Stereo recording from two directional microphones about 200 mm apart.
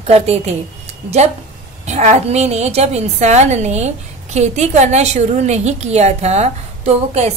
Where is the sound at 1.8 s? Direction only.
35° right (ahead or behind).